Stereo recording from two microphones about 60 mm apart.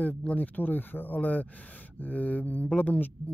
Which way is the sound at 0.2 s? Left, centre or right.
Left.